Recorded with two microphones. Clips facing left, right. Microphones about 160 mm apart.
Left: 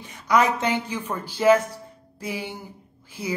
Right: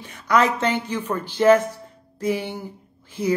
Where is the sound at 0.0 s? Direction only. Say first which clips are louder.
Right 1 dB; 10° left (ahead or behind).